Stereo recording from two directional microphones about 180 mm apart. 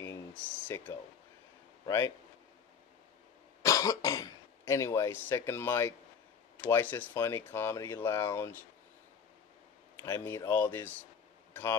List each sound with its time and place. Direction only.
0.0 s speech: 15° left (ahead or behind)
3.6 s speech: 20° left (ahead or behind)
9.9 s speech: 15° left (ahead or behind)